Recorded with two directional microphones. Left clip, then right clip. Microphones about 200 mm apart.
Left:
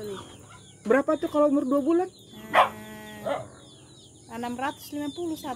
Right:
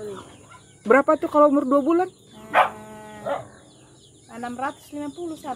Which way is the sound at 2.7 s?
55° left (ahead or behind).